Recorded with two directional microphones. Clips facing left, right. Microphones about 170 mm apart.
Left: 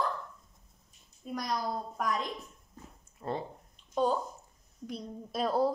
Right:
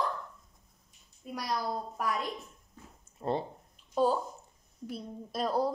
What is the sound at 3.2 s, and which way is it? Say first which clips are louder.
Speech: right 4 dB; 30° right (ahead or behind).